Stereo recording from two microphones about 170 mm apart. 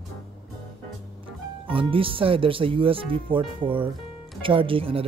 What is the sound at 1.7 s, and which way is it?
Speech, 30° right (ahead or behind).